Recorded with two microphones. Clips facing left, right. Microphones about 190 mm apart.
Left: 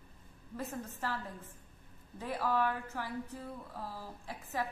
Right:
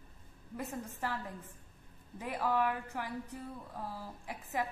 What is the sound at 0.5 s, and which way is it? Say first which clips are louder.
Speech: even; 15° right (ahead or behind).